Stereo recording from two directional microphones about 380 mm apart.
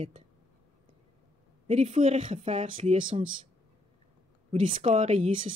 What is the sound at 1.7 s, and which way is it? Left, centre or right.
Speech, centre.